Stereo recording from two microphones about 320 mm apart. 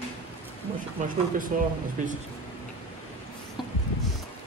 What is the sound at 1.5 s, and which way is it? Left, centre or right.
Speech, right.